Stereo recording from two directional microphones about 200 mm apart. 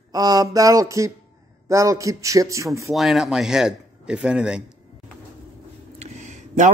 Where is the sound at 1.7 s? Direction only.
15° right (ahead or behind).